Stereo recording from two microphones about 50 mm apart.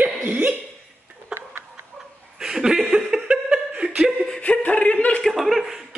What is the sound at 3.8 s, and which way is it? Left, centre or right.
Laughter, right.